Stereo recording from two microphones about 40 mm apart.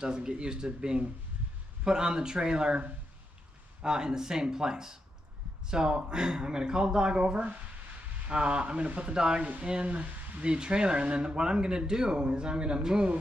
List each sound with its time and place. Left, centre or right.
0.0 s speech: right
3.8 s speech: centre
9.1 s speech: right